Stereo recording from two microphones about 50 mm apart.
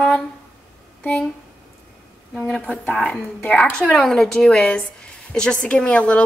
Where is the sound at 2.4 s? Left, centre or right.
Left.